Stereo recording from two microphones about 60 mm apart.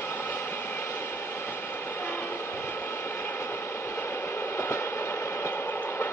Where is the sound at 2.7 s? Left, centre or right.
Left.